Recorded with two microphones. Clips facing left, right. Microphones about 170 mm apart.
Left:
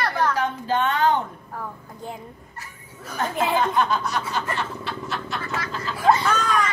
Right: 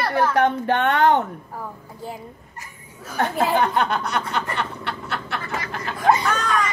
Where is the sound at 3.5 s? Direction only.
65° right (ahead or behind).